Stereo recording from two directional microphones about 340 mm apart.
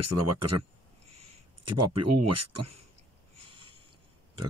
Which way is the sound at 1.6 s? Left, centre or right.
Right.